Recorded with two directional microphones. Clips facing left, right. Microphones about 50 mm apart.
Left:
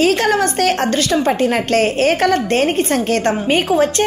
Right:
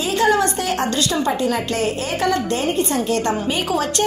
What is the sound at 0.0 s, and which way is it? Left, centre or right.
A woman's voice, left.